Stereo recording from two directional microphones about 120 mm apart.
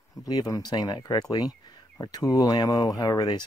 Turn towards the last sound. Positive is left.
turn(degrees=35)  # may be behind; listen again after turning